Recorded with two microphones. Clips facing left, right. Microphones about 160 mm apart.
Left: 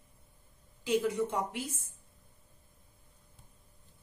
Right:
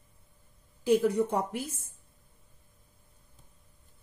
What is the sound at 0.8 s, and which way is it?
Speech, 40° right (ahead or behind).